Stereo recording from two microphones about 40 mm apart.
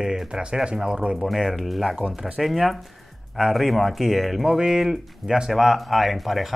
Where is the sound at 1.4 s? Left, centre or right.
Centre.